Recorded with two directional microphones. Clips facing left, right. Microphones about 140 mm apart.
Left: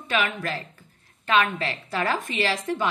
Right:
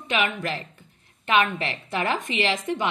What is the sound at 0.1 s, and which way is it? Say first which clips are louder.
A woman's voice: even; 20° right (ahead or behind).